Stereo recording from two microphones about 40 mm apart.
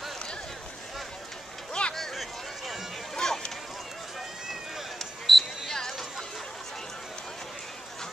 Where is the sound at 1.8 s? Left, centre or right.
Centre.